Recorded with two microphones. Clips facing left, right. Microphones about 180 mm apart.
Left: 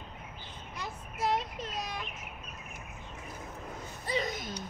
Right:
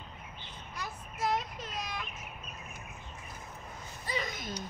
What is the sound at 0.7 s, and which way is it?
Vehicle, 25° left (ahead or behind).